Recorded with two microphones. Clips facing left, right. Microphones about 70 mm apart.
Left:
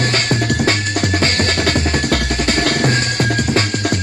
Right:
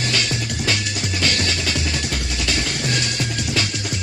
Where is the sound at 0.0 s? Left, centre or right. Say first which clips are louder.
Left 6 dB; left.